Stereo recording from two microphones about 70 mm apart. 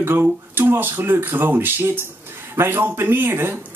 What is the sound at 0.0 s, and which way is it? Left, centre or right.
Speech, right.